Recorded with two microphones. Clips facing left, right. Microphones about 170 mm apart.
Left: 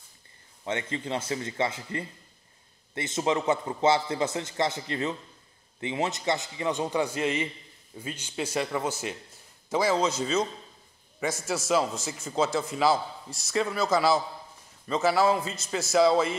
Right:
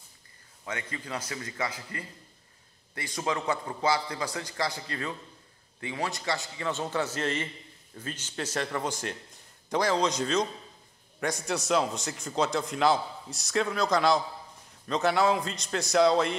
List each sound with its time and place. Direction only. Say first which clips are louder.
0.7 s a man's voice: left 6 dB; 25° left (ahead or behind); by 16.3 s 5° left (ahead or behind)